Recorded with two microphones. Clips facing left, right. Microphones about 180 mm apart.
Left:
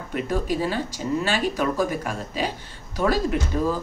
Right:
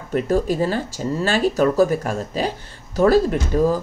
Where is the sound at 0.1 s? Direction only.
40° right (ahead or behind).